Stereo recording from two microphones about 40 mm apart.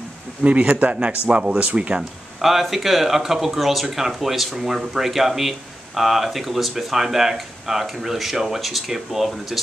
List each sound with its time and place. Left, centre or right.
0.4 s speech: right
2.4 s speech: centre